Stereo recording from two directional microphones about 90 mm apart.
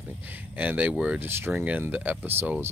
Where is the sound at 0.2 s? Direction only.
20° right (ahead or behind).